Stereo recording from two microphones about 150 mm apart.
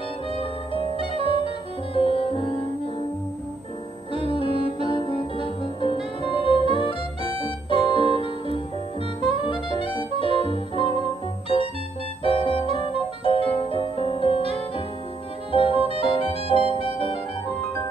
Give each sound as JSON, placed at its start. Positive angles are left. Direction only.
{"t": 0.3, "sound": "music", "side_deg": 35}
{"t": 1.2, "sound": "music", "side_deg": -40}
{"t": 2.0, "sound": "music", "side_deg": 35}
{"t": 4.1, "sound": "music", "side_deg": 35}